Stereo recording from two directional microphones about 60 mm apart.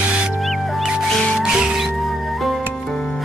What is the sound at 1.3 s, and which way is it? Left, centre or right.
Music, centre.